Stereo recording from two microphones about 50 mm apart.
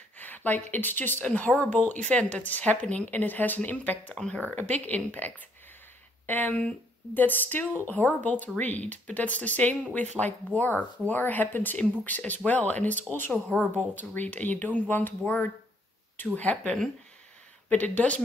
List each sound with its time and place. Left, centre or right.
0.2 s speech: left
4.1 s speech: centre
4.4 s speech: left
11.8 s speech: left